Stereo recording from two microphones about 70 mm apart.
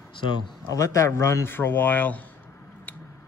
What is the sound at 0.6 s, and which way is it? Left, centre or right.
Speech, left.